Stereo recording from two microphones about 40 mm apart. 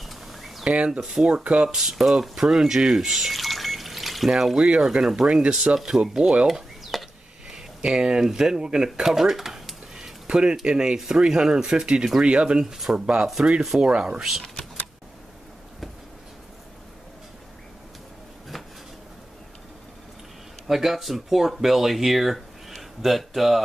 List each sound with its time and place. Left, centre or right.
0.0 s a sound: centre
0.7 s speech: right
1.7 s speech: centre
6.4 s a sound: centre
7.4 s speech: centre
12.5 s speech: centre
12.9 s speech: right
20.6 s speech: centre